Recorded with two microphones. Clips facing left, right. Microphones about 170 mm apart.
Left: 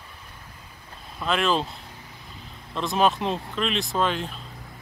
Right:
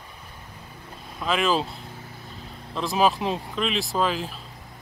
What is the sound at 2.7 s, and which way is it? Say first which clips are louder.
Speech: even; centre (ahead or behind).